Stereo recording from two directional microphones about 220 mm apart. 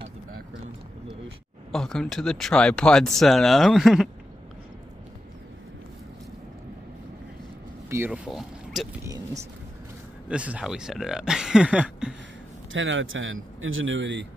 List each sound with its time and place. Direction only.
1.7 s speech: centre (ahead or behind)
7.9 s speech: 5° right (ahead or behind)
9.0 s speech: 15° right (ahead or behind)
12.7 s speech: 60° right (ahead or behind)